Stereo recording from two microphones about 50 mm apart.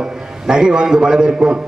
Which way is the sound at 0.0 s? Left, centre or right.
Centre.